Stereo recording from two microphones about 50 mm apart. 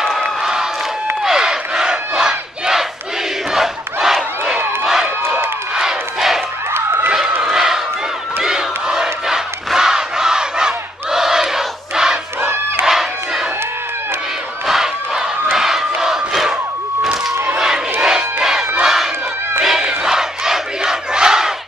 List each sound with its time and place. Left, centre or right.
0.0 s a sound: centre
1.2 s battle cry: centre
3.5 s crowd: centre
4.8 s run: centre
5.8 s crowd: centre
7.4 s crowd: centre
9.8 s battle cry: centre
12.4 s battle cry: right
12.8 s crowd: centre
14.7 s crowd: centre
15.5 s battle cry: centre
17.6 s crowd: centre